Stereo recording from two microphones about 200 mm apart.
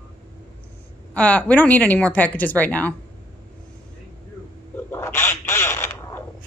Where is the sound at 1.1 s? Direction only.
5° left (ahead or behind).